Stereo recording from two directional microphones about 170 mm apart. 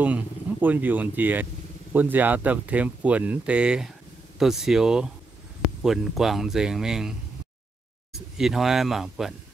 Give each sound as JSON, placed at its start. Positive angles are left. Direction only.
{"t": 0.0, "sound": "speech", "side_deg": -10}